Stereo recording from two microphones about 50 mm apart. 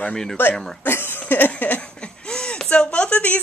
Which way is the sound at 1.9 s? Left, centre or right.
Centre.